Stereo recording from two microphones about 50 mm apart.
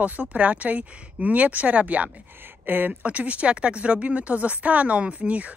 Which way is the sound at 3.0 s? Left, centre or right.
Right.